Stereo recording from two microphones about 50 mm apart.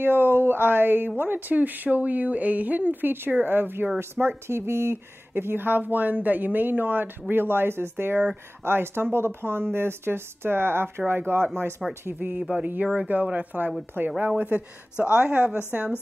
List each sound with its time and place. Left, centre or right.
0.0 s speech: right
12.8 s a woman's voice: centre
13.1 s speech: right
15.0 s a woman's voice: right